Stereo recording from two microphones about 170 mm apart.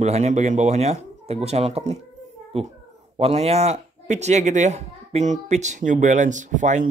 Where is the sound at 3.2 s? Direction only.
35° right (ahead or behind).